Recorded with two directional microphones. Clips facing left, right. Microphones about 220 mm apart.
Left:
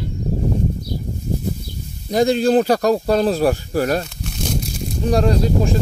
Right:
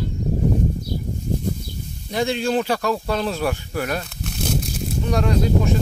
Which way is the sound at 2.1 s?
40° left (ahead or behind).